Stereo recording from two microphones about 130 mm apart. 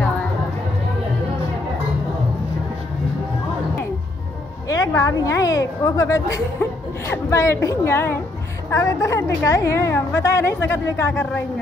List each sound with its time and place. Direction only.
4.6 s a woman's voice: 25° left (ahead or behind)